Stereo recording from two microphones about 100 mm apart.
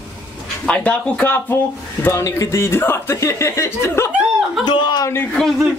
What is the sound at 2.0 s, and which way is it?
Speech, 30° left (ahead or behind).